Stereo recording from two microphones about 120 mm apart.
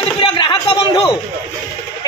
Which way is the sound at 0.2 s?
40° left (ahead or behind).